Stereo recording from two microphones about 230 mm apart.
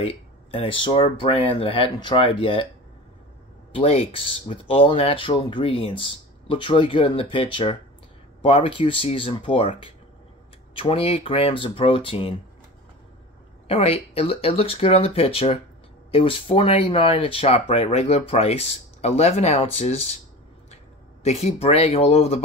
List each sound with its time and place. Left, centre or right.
0.0 s speech: left
3.7 s speech: left
13.7 s speech: left